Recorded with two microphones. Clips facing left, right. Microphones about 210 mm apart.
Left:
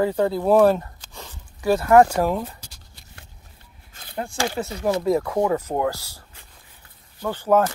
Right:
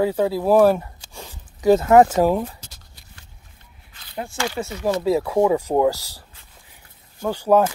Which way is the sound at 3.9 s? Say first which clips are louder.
Left 6 dB; 45° left (ahead or behind).